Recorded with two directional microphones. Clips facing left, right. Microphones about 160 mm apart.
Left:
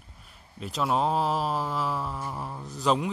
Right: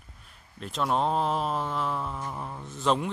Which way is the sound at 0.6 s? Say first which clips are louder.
Left 1 dB; centre (ahead or behind).